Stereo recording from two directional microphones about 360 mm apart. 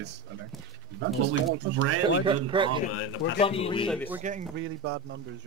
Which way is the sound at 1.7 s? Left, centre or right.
Right.